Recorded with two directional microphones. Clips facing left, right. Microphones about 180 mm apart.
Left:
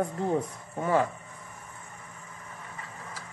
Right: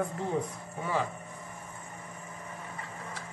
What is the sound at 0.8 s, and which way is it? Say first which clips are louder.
Speech: left 6 dB; 50° left (ahead or behind).